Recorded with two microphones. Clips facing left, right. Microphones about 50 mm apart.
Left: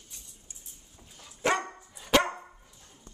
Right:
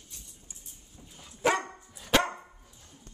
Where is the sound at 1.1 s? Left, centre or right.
Centre.